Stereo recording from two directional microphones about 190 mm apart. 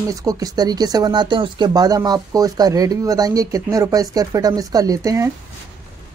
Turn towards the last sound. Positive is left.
turn(degrees=-15)  # may be behind; listen again after turning